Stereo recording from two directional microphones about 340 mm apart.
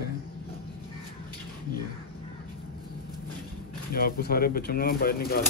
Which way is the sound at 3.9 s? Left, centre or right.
Left.